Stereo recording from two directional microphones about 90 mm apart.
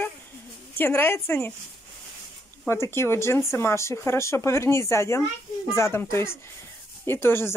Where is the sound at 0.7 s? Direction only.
25° left (ahead or behind).